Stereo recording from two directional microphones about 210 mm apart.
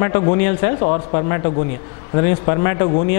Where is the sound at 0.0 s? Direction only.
15° left (ahead or behind).